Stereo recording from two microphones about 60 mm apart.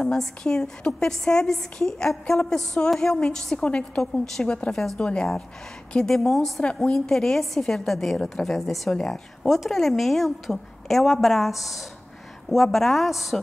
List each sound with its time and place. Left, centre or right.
0.0 s a woman's voice: centre
3.6 s a woman's voice: centre
6.6 s a woman's voice: centre